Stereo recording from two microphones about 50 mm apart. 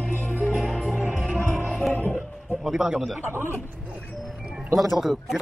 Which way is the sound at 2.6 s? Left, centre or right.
Centre.